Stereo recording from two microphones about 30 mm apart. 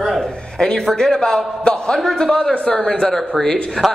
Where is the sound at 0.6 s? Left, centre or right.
Left.